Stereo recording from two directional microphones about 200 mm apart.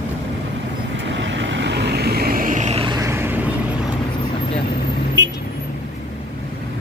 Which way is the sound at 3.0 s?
15° right (ahead or behind).